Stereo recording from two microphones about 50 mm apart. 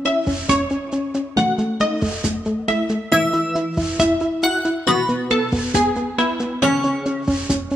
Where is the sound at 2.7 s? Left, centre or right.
Centre.